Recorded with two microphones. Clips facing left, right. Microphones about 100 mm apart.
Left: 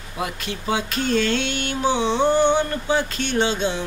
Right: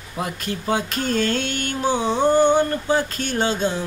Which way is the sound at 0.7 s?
45° right (ahead or behind).